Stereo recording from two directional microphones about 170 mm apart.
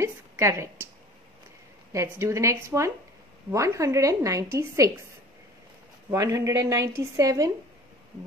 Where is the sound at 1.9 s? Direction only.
20° right (ahead or behind).